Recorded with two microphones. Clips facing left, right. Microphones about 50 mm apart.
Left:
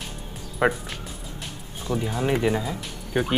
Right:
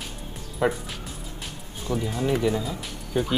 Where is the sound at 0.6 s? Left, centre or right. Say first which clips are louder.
Left 2 dB; left.